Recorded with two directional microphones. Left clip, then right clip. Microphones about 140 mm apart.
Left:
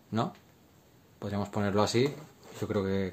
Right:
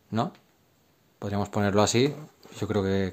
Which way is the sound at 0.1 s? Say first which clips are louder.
Right 3 dB; 35° right (ahead or behind).